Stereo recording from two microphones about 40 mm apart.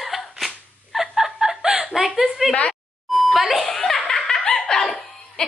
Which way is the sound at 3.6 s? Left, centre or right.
Centre.